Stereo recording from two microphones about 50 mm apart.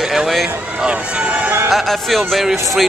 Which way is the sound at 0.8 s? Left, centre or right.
Right.